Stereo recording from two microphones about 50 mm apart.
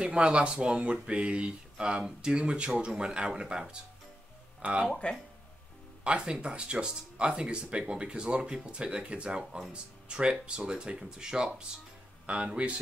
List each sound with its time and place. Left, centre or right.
0.0 s speech: centre
4.8 s speech: centre
6.0 s speech: centre